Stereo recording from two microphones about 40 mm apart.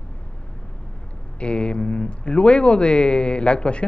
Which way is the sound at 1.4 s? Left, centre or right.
Left.